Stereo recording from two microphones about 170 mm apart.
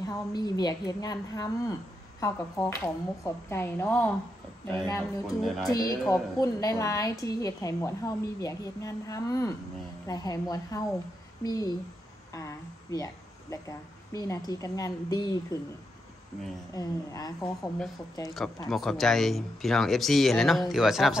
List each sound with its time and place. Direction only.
0.0 s a woman's voice: 25° left (ahead or behind)
5.2 s speech: centre (ahead or behind)
5.7 s a woman's voice: 20° left (ahead or behind)
16.7 s a woman's voice: 20° left (ahead or behind)
18.7 s speech: centre (ahead or behind)